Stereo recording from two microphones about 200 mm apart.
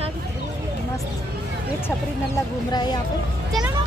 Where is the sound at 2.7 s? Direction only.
20° left (ahead or behind).